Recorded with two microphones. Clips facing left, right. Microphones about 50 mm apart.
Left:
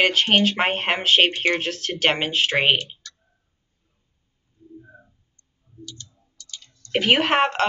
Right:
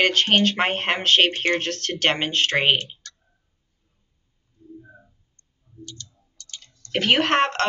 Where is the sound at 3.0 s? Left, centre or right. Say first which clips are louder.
Left 1 dB; right.